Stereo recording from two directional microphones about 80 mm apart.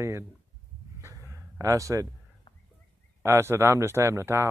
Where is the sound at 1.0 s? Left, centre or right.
Right.